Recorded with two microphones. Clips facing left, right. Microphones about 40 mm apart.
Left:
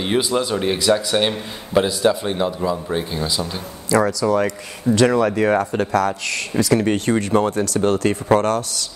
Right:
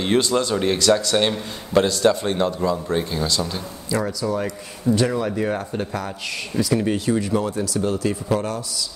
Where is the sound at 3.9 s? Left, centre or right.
Left.